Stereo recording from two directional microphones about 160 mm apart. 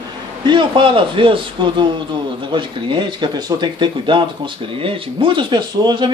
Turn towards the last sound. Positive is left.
turn(degrees=-30)  # may be behind; listen again after turning